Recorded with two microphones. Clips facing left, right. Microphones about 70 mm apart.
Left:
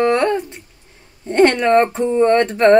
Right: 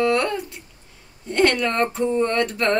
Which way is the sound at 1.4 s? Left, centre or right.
Left.